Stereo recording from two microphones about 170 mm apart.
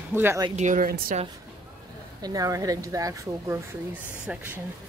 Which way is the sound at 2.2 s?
20° right (ahead or behind).